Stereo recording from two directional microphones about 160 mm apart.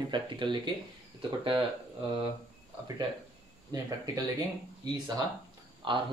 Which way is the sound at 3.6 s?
20° right (ahead or behind).